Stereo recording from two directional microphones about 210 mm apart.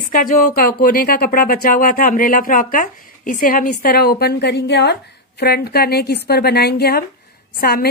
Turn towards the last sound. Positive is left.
turn(degrees=45)  # may be behind; listen again after turning